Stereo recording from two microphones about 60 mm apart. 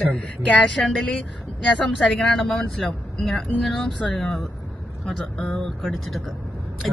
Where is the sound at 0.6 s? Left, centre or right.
Centre.